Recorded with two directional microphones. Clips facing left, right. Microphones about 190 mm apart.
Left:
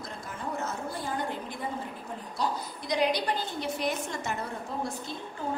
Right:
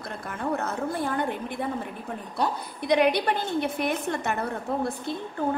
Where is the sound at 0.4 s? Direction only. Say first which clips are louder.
Right 6 dB; 60° right (ahead or behind).